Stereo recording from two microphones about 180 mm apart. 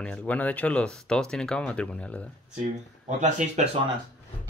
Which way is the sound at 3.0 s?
45° right (ahead or behind).